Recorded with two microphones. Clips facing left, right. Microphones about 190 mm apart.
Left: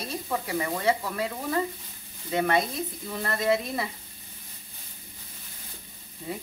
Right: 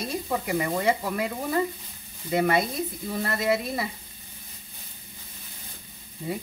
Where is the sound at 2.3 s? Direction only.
10° right (ahead or behind).